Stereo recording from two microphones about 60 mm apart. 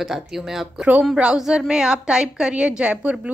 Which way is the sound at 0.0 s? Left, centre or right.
Centre.